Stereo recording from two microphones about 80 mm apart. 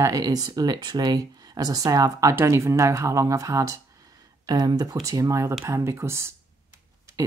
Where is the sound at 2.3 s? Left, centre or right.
Right.